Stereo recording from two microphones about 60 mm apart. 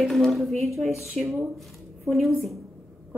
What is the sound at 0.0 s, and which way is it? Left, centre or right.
A woman's voice, centre.